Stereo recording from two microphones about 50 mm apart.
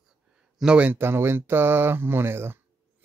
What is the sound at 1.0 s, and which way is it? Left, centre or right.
Speech, right.